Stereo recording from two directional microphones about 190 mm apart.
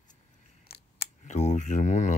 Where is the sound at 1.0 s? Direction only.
40° left (ahead or behind).